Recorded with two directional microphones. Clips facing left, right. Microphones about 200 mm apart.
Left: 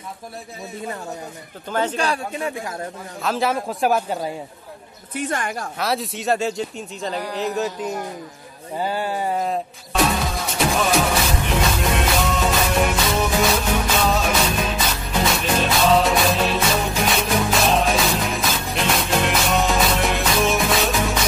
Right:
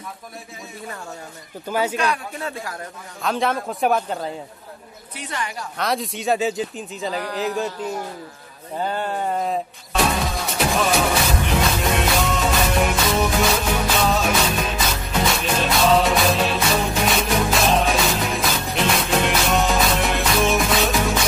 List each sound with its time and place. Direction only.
1.7 s speech: 10° right (ahead or behind)
2.3 s speech: 20° left (ahead or behind)
3.2 s speech: centre (ahead or behind)
5.1 s a woman's voice: 50° left (ahead or behind)
5.8 s speech: centre (ahead or behind)
8.7 s music: 5° left (ahead or behind)